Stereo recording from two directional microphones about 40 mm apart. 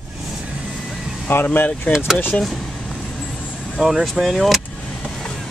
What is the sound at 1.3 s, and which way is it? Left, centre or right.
Speech, left.